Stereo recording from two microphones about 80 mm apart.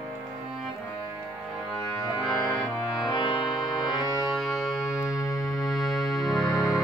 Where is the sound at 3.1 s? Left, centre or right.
Left.